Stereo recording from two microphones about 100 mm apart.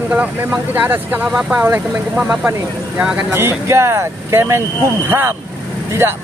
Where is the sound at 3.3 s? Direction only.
25° right (ahead or behind).